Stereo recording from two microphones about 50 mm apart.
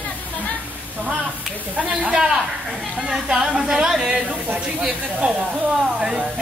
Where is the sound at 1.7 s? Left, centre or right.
Right.